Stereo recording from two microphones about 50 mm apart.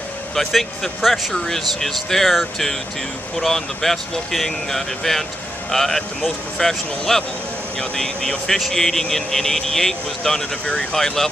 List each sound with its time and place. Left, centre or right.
0.4 s speech: centre
3.3 s speech: centre
10.7 s speech: left
11.0 s speech: centre